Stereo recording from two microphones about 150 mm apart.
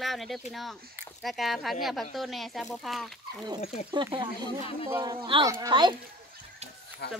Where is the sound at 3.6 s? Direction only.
50° left (ahead or behind).